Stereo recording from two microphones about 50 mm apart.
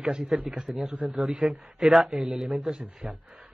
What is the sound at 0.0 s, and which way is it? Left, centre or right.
A man's voice, centre.